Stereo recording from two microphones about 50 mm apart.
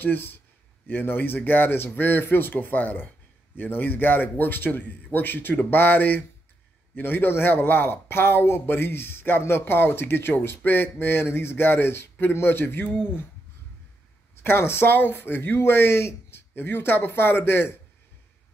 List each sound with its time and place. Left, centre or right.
0.0 s a man's voice: left
14.4 s speech: left